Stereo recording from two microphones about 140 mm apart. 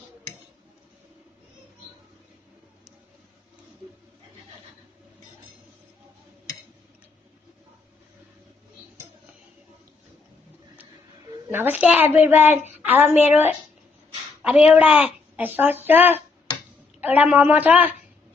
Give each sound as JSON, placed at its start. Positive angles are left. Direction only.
{"t": 11.5, "sound": "a woman's voice", "side_deg": -15}